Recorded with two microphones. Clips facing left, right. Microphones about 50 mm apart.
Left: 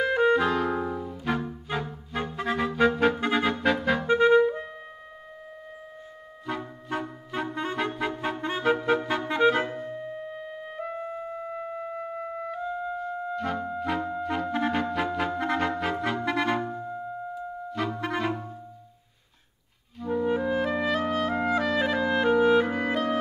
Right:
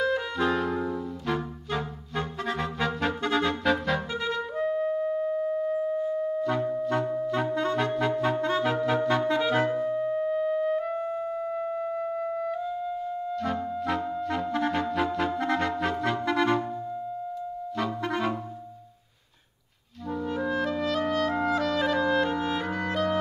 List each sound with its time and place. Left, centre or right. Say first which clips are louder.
0.0 s clarinet: left 6 dB; left
0.4 s music: left 1 dB; centre
4.1 s clarinet: left 11 dB; left
4.5 s music: right 6 dB; centre
6.4 s music: right 8 dB; centre
8.4 s clarinet: right 1 dB; centre
10.3 s music: right 12 dB; centre
12.7 s music: even; left
13.4 s music: even; centre
14.2 s clarinet: left 1 dB; centre
20.1 s clarinet: left 4 dB; centre